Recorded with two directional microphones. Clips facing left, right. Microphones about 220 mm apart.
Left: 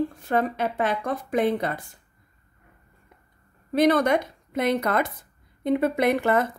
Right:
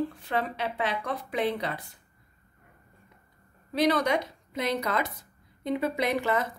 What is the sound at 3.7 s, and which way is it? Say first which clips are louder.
A woman's voice: left 5 dB; 50° left (ahead or behind).